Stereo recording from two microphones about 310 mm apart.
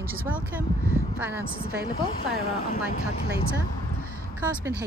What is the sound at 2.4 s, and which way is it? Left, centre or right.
Speech, centre.